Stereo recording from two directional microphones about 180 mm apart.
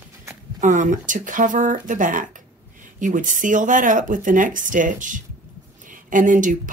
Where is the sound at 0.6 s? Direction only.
45° right (ahead or behind).